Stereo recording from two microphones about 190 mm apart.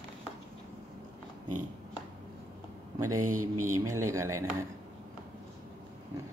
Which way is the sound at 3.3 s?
15° right (ahead or behind).